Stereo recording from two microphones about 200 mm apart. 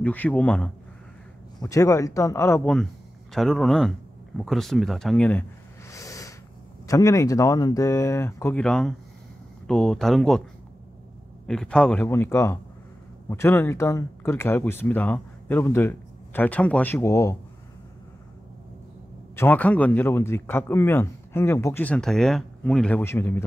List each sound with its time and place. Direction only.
0.0 s speech: 10° left (ahead or behind)
5.9 s a sound: 15° left (ahead or behind)
6.9 s speech: 15° left (ahead or behind)
11.4 s speech: 5° left (ahead or behind)
19.3 s speech: 10° left (ahead or behind)